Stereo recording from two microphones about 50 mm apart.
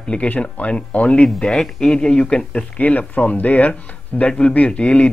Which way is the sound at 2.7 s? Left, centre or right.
Left.